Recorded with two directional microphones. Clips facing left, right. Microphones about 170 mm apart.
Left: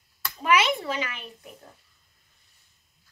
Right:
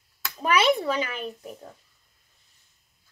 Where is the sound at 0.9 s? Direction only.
40° right (ahead or behind).